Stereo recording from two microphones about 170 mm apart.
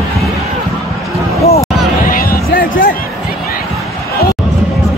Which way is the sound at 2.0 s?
60° left (ahead or behind).